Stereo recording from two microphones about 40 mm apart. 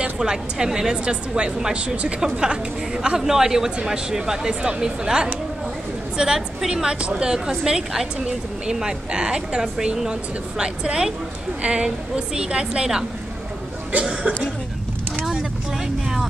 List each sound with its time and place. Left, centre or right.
0.2 s speech: centre
1.0 s speech: right
3.2 s a woman's voice: centre
7.0 s a woman's voice: right
7.2 s speech: centre